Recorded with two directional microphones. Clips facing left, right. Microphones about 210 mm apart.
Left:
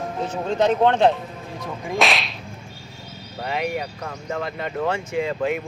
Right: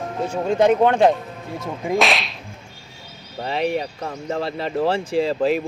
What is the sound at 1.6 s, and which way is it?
Speech, 25° right (ahead or behind).